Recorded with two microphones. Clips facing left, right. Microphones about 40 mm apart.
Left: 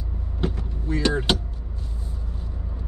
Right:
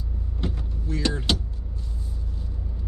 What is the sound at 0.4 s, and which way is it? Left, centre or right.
Vehicle, left.